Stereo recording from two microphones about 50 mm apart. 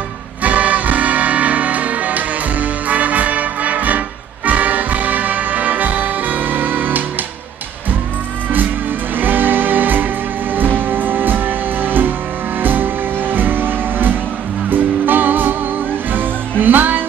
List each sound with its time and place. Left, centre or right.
0.4 s music: right
9.2 s music: right